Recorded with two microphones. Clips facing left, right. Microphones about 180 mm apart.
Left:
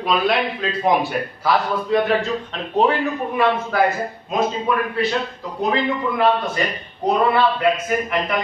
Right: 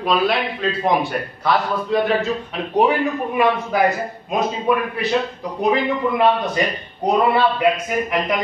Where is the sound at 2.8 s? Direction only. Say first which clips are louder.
Right 1 dB; 15° right (ahead or behind).